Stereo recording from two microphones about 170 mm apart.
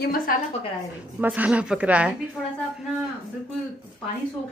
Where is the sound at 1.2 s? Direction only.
10° right (ahead or behind).